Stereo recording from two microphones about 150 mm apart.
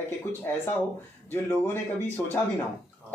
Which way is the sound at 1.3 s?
15° left (ahead or behind).